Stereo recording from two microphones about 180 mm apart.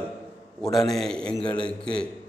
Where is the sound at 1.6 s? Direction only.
5° left (ahead or behind).